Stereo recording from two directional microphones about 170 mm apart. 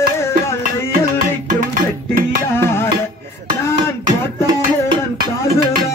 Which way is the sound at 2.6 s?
15° left (ahead or behind).